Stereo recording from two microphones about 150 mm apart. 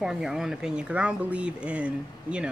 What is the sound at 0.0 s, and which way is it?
Speech, centre (ahead or behind).